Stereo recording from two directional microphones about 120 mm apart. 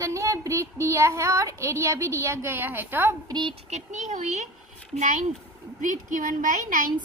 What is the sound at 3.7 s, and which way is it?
Speech, 80° right.